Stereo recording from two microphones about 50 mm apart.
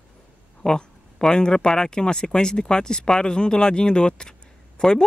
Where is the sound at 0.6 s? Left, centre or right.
Centre.